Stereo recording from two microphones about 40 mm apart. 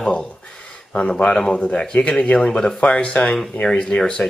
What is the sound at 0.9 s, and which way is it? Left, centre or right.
Speech, left.